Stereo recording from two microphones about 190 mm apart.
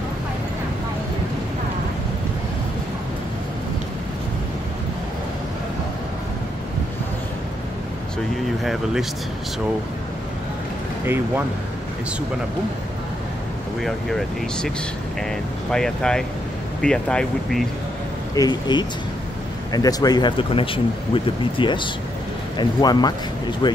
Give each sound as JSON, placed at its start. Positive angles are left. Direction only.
{"t": 13.7, "sound": "speech", "side_deg": 0}
{"t": 15.7, "sound": "speech", "side_deg": 5}
{"t": 18.3, "sound": "speech", "side_deg": 20}